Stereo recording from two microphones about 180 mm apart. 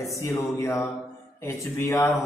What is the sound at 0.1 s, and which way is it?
Speech, 15° left (ahead or behind).